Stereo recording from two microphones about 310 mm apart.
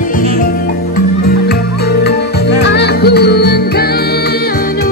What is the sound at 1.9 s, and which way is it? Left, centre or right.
Music, left.